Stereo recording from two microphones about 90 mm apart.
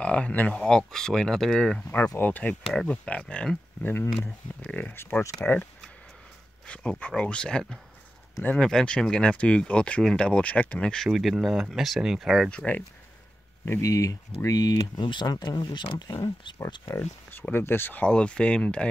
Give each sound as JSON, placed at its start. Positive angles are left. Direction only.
{"t": 0.0, "sound": "speech", "side_deg": 15}
{"t": 2.1, "sound": "speech", "side_deg": 20}
{"t": 2.6, "sound": "speech", "side_deg": 5}
{"t": 6.6, "sound": "a sound", "side_deg": 10}
{"t": 7.2, "sound": "speech", "side_deg": 10}
{"t": 11.1, "sound": "speech", "side_deg": 0}
{"t": 12.4, "sound": "speech", "side_deg": 15}
{"t": 13.7, "sound": "speech", "side_deg": 35}
{"t": 17.0, "sound": "speech", "side_deg": 20}